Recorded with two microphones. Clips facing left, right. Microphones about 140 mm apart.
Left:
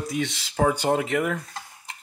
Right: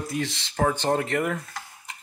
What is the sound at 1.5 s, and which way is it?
Stir, 25° left (ahead or behind).